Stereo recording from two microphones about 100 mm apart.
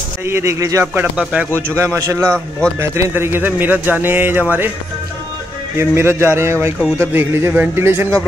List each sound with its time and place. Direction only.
0.2 s speech: 25° right (ahead or behind)
0.9 s speech: 20° right (ahead or behind)
1.8 s speech: 30° right (ahead or behind)
5.8 s speech: 25° right (ahead or behind)